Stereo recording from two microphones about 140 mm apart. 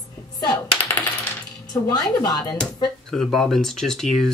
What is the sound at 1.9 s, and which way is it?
Speech, 30° left (ahead or behind).